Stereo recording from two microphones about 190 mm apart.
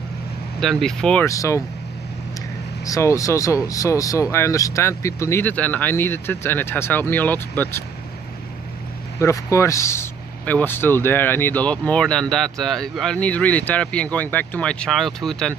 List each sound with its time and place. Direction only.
0.6 s speech: centre (ahead or behind)
1.2 s speech: 15° left (ahead or behind)
2.8 s speech: 15° left (ahead or behind)
9.2 s speech: 15° left (ahead or behind)